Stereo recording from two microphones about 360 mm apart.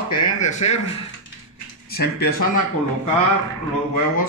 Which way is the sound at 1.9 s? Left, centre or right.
Left.